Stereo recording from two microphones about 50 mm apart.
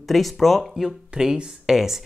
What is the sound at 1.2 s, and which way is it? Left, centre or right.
Speech, centre.